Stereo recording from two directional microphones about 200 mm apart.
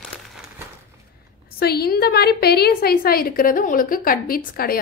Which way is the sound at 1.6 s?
50° left (ahead or behind).